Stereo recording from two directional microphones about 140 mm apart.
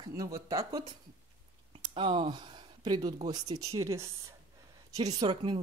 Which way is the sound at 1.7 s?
40° right (ahead or behind).